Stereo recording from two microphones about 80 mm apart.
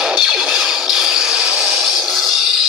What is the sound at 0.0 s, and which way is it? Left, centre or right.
Music, centre.